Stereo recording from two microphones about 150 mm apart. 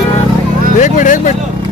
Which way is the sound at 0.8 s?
55° left (ahead or behind).